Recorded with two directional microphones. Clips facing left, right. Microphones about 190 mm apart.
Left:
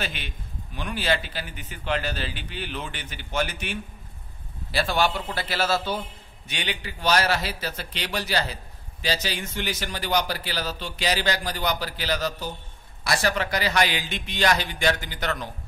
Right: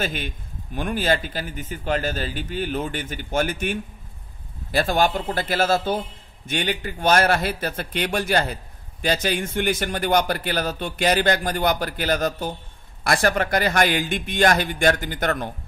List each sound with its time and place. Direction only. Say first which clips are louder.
0.0 s a man's voice: right 6 dB; 45° right (ahead or behind)